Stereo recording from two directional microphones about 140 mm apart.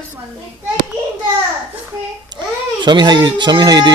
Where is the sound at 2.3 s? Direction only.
30° right (ahead or behind).